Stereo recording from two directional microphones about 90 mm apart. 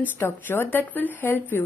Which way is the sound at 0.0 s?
20° left (ahead or behind).